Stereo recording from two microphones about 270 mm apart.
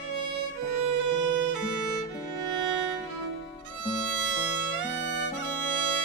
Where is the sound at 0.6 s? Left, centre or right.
Right.